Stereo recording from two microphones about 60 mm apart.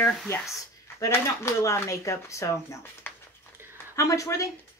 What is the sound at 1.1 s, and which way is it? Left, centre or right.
Speech, left.